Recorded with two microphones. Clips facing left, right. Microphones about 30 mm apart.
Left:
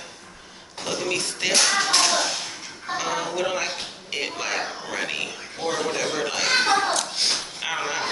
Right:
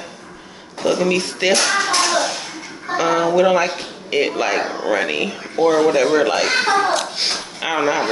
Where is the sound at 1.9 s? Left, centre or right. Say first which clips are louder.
Right 4 dB; centre.